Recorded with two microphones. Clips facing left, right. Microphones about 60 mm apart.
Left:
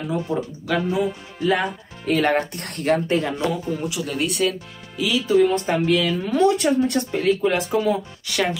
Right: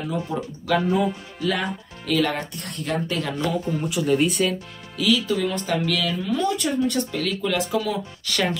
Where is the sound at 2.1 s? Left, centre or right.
Left.